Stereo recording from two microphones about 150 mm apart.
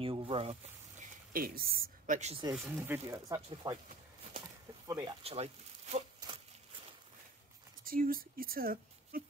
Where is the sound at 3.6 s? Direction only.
25° right (ahead or behind).